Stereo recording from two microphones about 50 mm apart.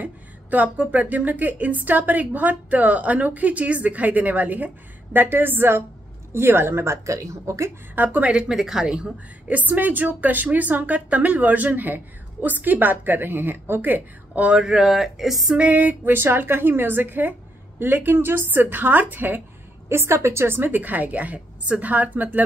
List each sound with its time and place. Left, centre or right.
0.0 s speech: right
5.1 s a woman's voice: right
7.9 s speech: right
8.3 s speech: right
8.5 s a woman's voice: centre
9.5 s speech: right
14.6 s a woman's voice: centre
14.9 s speech: centre
15.5 s speech: right
16.1 s a woman's voice: right
19.9 s speech: right